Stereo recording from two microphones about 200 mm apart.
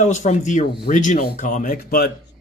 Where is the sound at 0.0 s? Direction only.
35° left (ahead or behind).